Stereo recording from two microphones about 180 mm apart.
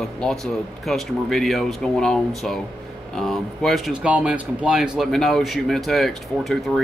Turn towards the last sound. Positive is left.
turn(degrees=0)  # may be behind; listen again after turning